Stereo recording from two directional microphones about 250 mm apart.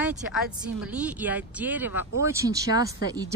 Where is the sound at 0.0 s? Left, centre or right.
Centre.